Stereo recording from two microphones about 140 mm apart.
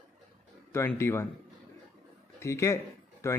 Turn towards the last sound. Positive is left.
turn(degrees=20)  # may be behind; listen again after turning